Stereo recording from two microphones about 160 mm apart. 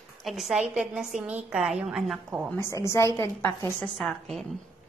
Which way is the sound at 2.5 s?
15° left (ahead or behind).